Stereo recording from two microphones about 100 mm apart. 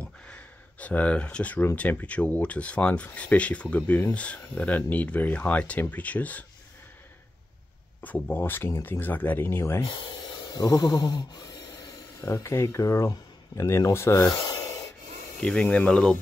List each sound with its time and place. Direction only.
0.0 s a sound: 15° left (ahead or behind)
1.8 s speech: 15° left (ahead or behind)
8.0 s speech: 20° left (ahead or behind)
10.5 s a sound: 40° left (ahead or behind)
11.0 s rub: 45° left (ahead or behind)
12.2 s speech: 30° left (ahead or behind)
15.4 s speech: 10° left (ahead or behind)